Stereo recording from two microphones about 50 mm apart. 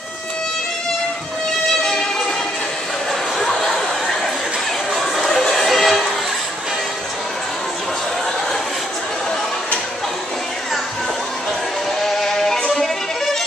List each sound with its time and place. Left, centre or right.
1.9 s train: centre
3.3 s a sound: centre
4.9 s music: centre
12.0 s music: centre